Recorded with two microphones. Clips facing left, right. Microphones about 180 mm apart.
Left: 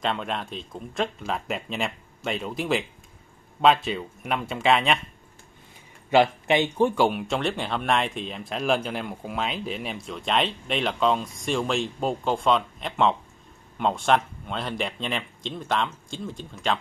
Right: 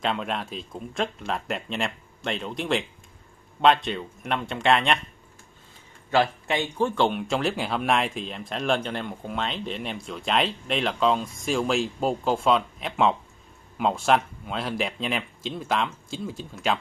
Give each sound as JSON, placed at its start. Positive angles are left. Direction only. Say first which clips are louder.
{"t": 0.0, "sound": "speech", "louder": "even", "side_deg": 0}
{"t": 6.0, "sound": "speech", "louder": "left 3 dB", "side_deg": 20}
{"t": 7.0, "sound": "speech", "louder": "left 1 dB", "side_deg": 5}